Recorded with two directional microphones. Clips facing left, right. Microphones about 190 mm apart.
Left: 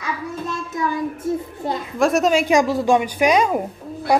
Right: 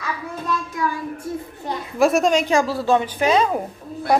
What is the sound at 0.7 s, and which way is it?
Child singing, 20° left (ahead or behind).